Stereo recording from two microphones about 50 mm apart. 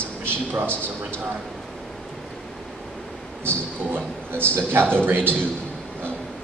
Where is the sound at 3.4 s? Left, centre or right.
Right.